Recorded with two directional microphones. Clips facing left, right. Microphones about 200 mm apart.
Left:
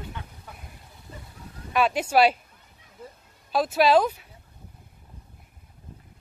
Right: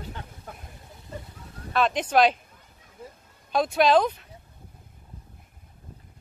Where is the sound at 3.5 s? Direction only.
5° left (ahead or behind).